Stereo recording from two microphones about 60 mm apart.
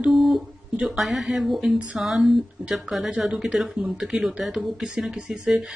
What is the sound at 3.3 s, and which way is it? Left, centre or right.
Speech, centre.